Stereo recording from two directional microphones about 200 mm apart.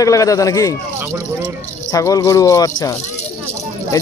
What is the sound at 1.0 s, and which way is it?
Speech, 15° right (ahead or behind).